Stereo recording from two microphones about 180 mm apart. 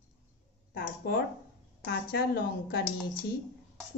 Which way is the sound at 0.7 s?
60° left (ahead or behind).